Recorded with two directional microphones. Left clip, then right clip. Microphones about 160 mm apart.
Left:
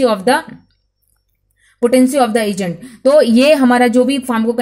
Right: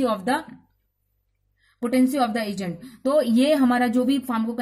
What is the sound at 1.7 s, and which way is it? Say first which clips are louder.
Speech: left 10 dB; 35° left (ahead or behind).